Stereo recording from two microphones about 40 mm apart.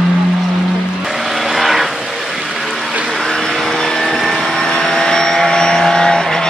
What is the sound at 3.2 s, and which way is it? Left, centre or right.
Vehicle, centre.